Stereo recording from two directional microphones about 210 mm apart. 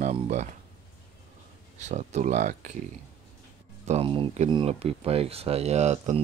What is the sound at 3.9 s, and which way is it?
Speech, 25° right (ahead or behind).